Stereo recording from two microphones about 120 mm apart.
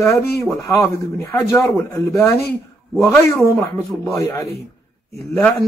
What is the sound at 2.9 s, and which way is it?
Speech, centre (ahead or behind).